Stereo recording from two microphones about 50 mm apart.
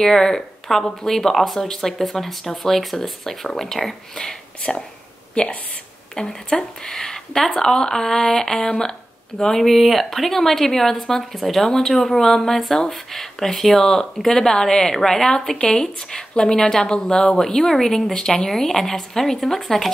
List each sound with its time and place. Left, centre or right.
0.0 s speech: centre
6.1 s speech: centre
9.4 s a woman's voice: centre